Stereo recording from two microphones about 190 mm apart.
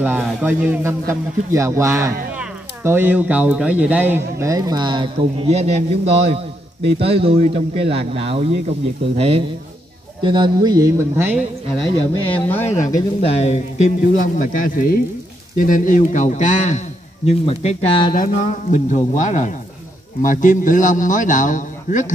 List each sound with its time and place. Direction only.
0.0 s speech: 10° right (ahead or behind)
12.4 s speech: 10° left (ahead or behind)
12.7 s speech: 35° left (ahead or behind)
14.0 s a man's voice: 45° left (ahead or behind); by 18.1 s 30° left (ahead or behind)
18.3 s a man's voice: 40° left (ahead or behind)